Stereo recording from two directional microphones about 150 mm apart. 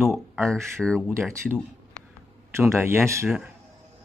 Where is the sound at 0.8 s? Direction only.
5° left (ahead or behind).